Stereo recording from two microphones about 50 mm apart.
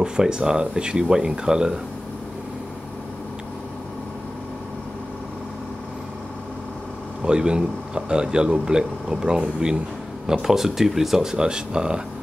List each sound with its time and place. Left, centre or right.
0.0 s a man's voice: centre
7.2 s a man's voice: centre